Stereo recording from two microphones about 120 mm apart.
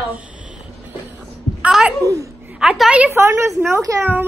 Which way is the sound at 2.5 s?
5° right (ahead or behind).